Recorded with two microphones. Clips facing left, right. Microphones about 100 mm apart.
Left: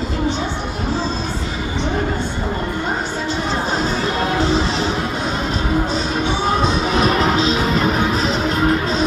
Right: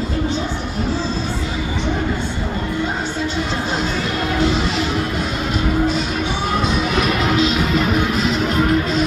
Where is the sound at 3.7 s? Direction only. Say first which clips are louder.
Left 2 dB; 35° left (ahead or behind).